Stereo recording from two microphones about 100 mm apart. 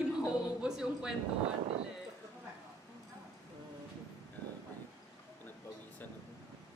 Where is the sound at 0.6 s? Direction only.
5° right (ahead or behind).